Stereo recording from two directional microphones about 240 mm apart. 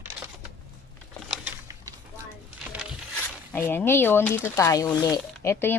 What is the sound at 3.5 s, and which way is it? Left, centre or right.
Speech, centre.